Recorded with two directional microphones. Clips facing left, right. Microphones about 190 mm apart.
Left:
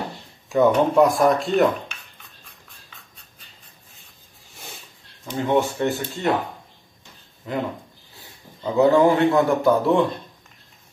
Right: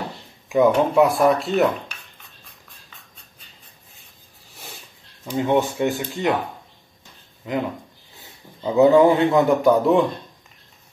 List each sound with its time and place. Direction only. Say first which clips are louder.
0.7 s speech: left 1 dB; 5° right (ahead or behind)
5.2 s speech: right 1 dB; 15° right (ahead or behind)
7.5 s speech: right 2 dB; 20° right (ahead or behind)